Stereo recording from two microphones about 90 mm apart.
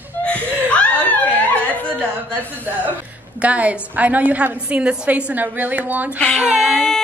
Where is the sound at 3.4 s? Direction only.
15° right (ahead or behind).